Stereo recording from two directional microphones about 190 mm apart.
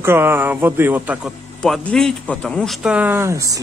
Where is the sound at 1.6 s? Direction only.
5° left (ahead or behind); by 3.5 s 15° right (ahead or behind).